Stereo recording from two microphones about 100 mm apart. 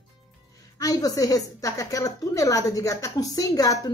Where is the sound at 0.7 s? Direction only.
35° left (ahead or behind).